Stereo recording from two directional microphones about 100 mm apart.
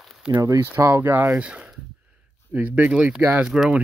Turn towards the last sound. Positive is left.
turn(degrees=-5)  # may be behind; listen again after turning